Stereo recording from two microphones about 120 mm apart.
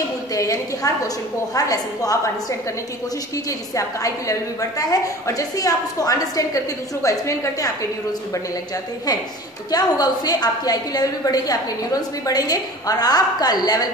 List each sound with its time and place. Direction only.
0.3 s a woman's voice: 30° left (ahead or behind)
3.4 s a woman's voice: 30° left (ahead or behind)
9.7 s a woman's voice: 35° left (ahead or behind)